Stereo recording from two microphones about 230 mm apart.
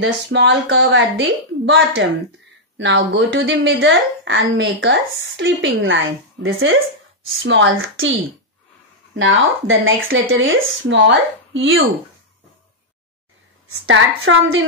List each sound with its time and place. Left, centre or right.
0.0 s a woman's voice: right
13.8 s speech: right